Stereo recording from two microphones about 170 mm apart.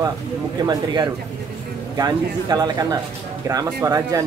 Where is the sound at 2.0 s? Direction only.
25° right (ahead or behind).